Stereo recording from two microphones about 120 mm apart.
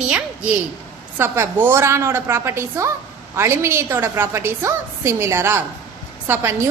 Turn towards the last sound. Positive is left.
turn(degrees=-20)  # may be behind; listen again after turning